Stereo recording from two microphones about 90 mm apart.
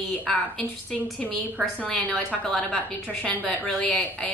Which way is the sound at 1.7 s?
15° left (ahead or behind).